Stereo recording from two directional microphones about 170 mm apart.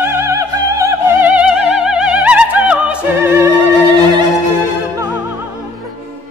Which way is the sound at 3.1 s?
15° right (ahead or behind).